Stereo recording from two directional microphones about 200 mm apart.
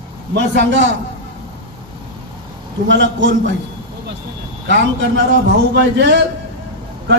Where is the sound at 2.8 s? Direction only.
65° right (ahead or behind).